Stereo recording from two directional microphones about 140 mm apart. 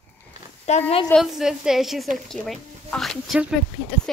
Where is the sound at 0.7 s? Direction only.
55° left (ahead or behind).